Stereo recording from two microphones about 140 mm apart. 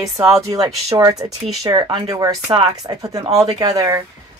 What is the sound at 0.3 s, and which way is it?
Speech, 25° right (ahead or behind).